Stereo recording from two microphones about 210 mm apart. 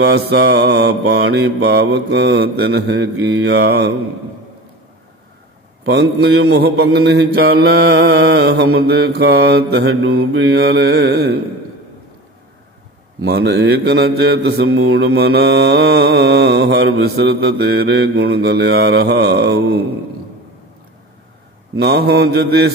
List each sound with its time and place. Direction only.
0.0 s mantra: 55° right (ahead or behind)
6.2 s mantra: 50° right (ahead or behind)
13.2 s mantra: 50° right (ahead or behind)
21.7 s mantra: 50° right (ahead or behind)